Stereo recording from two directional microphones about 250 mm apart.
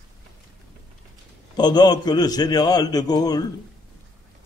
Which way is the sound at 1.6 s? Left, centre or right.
Centre.